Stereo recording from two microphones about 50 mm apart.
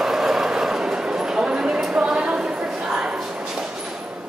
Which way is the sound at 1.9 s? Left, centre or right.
Centre.